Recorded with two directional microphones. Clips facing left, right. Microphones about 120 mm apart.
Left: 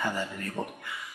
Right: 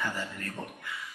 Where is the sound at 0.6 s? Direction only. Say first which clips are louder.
Left 8 dB; 60° left (ahead or behind).